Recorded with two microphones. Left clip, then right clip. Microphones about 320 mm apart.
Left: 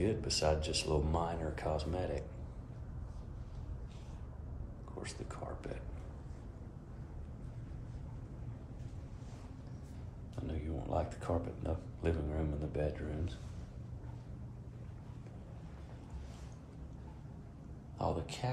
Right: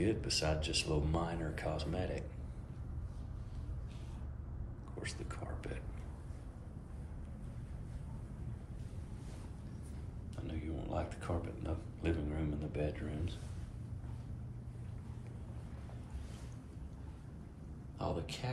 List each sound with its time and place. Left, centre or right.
0.0 s speech: centre
5.0 s speech: centre
10.4 s speech: centre
17.9 s speech: centre